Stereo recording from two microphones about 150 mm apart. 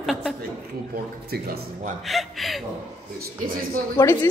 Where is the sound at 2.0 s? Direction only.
Centre (ahead or behind).